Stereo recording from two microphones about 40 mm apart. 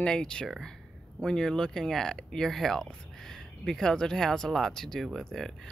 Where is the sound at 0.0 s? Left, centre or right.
Left.